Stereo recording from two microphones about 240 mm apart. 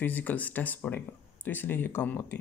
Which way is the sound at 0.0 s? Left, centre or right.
Centre.